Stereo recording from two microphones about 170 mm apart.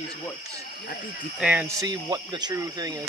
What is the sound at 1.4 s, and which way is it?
Speech, 10° right (ahead or behind).